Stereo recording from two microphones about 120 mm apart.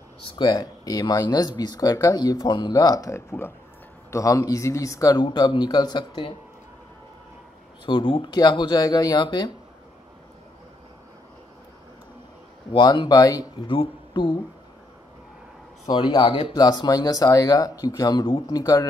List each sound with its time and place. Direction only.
0.4 s speech: 30° left (ahead or behind)
7.8 s speech: 45° left (ahead or behind)
12.7 s speech: 40° left (ahead or behind)
15.9 s speech: 40° left (ahead or behind)
16.5 s speech: 35° left (ahead or behind)